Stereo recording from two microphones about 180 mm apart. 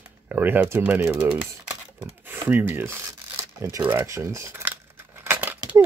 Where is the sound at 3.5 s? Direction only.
15° right (ahead or behind).